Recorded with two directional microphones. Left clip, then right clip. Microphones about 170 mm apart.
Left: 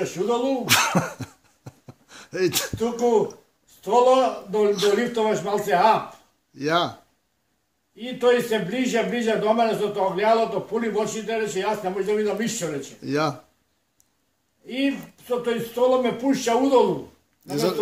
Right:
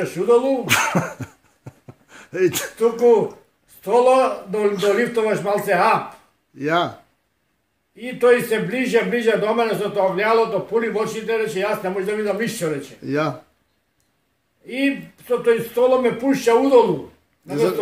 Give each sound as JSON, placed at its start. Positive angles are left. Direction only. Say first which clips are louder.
{"t": 0.0, "sound": "a man's voice", "louder": "right 7 dB", "side_deg": 5}
{"t": 0.7, "sound": "speech", "louder": "right 1 dB", "side_deg": 15}
{"t": 1.6, "sound": "a sound", "louder": "right 3 dB", "side_deg": 10}
{"t": 2.3, "sound": "a man's voice", "louder": "right 4 dB", "side_deg": 5}
{"t": 14.7, "sound": "a man's voice", "louder": "right 4 dB", "side_deg": 5}